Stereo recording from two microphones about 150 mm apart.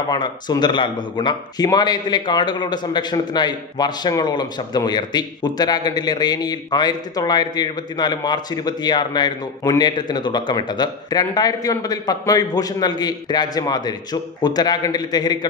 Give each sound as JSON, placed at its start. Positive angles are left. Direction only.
{"t": 0.1, "sound": "a man's voice", "side_deg": 30}